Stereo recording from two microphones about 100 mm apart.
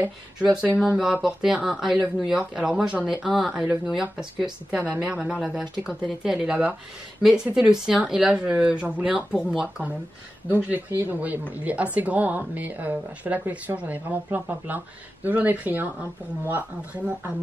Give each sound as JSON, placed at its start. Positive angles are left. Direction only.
{"t": 0.7, "sound": "a woman's voice", "side_deg": 0}
{"t": 10.5, "sound": "a woman's voice", "side_deg": -20}